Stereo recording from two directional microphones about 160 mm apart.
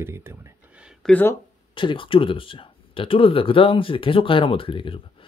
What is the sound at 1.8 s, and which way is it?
Speech, 30° left (ahead or behind).